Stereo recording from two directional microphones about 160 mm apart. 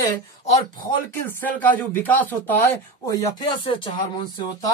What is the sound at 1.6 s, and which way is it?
A woman's voice, 10° left (ahead or behind).